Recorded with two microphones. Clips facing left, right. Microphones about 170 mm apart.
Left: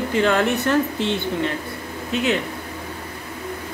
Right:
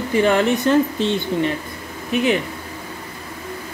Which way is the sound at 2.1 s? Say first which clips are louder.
Right 3 dB; 15° right (ahead or behind).